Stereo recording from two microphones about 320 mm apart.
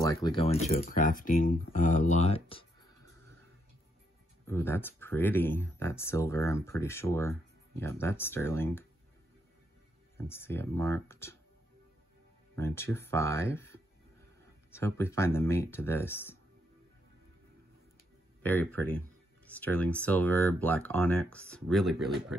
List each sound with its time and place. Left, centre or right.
0.0 s a sound: centre
0.4 s speech: centre
4.5 s speech: centre
10.1 s speech: centre
12.5 s speech: centre
18.4 s speech: centre